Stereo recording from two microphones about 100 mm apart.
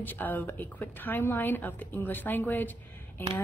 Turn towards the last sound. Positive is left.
turn(degrees=20)  # may be behind; listen again after turning